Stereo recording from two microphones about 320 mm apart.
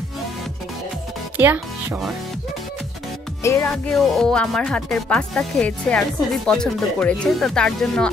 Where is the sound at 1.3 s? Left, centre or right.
Centre.